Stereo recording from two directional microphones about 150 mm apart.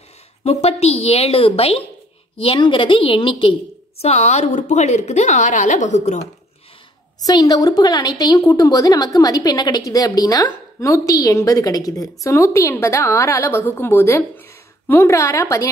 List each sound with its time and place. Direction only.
0.4 s a woman's voice: 40° left (ahead or behind)
4.0 s a woman's voice: 45° left (ahead or behind)
7.2 s a woman's voice: 25° left (ahead or behind)